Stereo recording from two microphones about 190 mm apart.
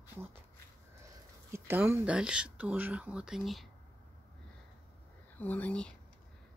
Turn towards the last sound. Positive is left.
turn(degrees=5)  # may be behind; listen again after turning